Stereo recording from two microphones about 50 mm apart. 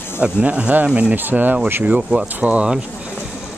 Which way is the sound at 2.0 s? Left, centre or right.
Right.